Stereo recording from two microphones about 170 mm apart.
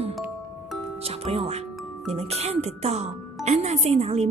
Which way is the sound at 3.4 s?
40° right (ahead or behind).